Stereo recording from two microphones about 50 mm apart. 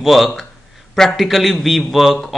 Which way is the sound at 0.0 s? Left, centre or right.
Centre.